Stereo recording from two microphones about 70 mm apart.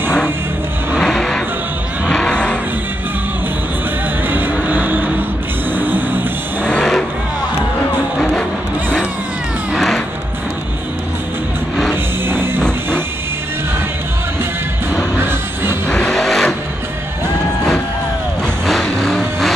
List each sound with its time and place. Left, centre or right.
0.9 s music: centre
2.0 s a sound: centre
4.3 s vehicle: right
5.8 s music: right
6.7 s vehicle: centre
8.2 s music: centre
9.8 s music: centre
11.9 s music: right
15.1 s music: right
15.9 s vehicle: centre
18.7 s vehicle: centre